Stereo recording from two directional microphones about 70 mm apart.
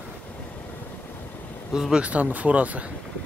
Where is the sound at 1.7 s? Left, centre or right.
Centre.